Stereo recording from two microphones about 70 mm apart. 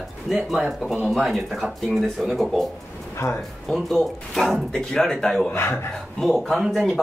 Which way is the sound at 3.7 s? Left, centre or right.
Centre.